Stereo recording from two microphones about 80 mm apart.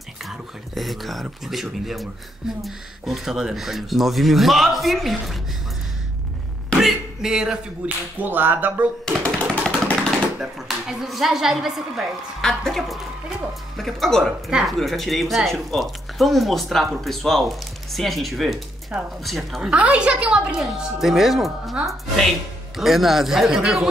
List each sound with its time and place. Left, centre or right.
0.2 s speech: centre
6.8 s speech: centre
8.2 s whip: right
9.0 s a sound: centre
10.4 s speech: centre
12.4 s speech: centre
14.5 s a woman's voice: centre
14.8 s speech: centre
18.9 s a woman's voice: centre
19.2 s speech: centre
19.7 s a woman's voice: centre